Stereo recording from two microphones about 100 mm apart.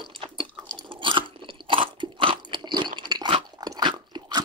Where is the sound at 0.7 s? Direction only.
50° right (ahead or behind).